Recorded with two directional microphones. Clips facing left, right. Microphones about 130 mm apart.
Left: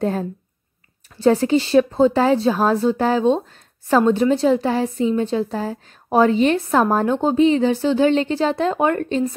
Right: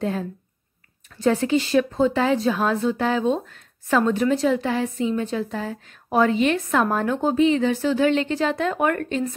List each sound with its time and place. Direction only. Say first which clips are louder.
0.0 s speech: left 4 dB; 40° left (ahead or behind)